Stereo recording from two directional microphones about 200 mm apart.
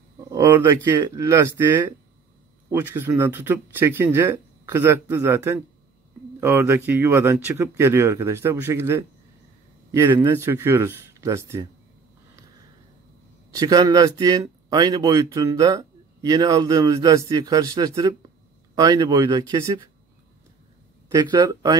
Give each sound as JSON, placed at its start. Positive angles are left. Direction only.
{"t": 0.3, "sound": "speech", "side_deg": -15}
{"t": 13.5, "sound": "speech", "side_deg": -20}
{"t": 21.1, "sound": "speech", "side_deg": -20}